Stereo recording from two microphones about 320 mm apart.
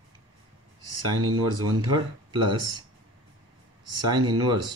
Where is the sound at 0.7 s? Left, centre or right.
Right.